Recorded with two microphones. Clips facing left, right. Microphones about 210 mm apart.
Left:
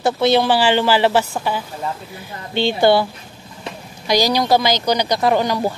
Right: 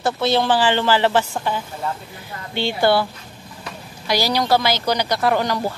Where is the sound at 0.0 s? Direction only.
15° left (ahead or behind).